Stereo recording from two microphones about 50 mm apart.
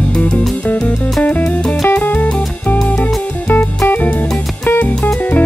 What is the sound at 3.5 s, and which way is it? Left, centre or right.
Music, left.